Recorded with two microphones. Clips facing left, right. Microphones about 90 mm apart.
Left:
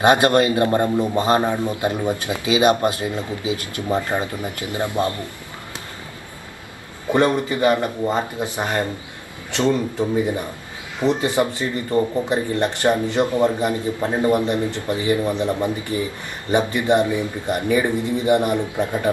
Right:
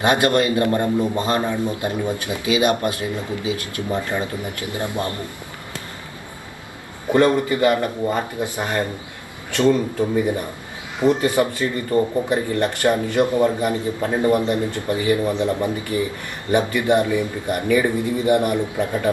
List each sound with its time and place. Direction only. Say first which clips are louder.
0.0 s speech: left 2 dB; 25° left (ahead or behind)
7.1 s speech: right 2 dB; 20° left (ahead or behind)